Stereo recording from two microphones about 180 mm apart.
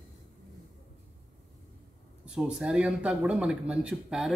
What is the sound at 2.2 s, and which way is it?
A man's voice, 5° right (ahead or behind).